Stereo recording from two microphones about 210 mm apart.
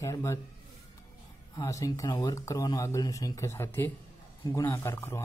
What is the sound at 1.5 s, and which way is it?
Speech, 15° left (ahead or behind).